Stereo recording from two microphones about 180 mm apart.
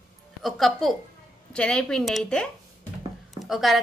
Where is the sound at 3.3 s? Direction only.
Centre (ahead or behind).